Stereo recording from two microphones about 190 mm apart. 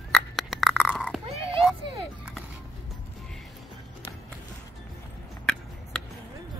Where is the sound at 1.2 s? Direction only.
30° right (ahead or behind).